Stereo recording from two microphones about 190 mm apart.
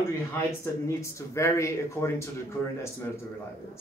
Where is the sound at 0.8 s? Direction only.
15° left (ahead or behind).